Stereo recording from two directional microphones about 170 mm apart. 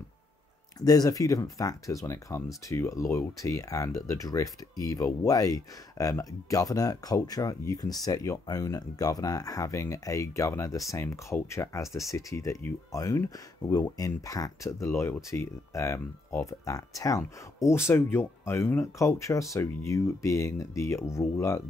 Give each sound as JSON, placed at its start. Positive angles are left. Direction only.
{"t": 0.7, "sound": "speech", "side_deg": 20}